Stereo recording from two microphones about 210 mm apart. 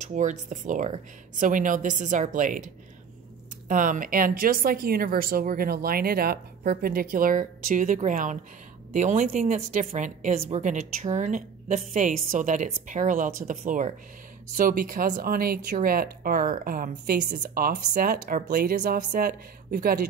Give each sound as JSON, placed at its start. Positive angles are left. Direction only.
{"t": 0.0, "sound": "speech", "side_deg": -35}